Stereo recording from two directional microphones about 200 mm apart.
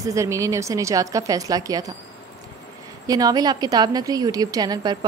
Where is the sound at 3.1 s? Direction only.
20° right (ahead or behind).